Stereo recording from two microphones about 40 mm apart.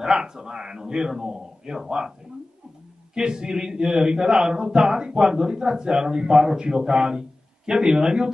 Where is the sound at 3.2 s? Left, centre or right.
Centre.